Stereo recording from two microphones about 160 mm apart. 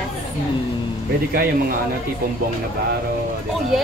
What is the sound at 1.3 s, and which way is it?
Speech, 65° right (ahead or behind).